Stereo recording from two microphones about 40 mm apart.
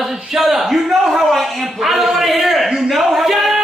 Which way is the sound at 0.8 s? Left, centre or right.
Centre.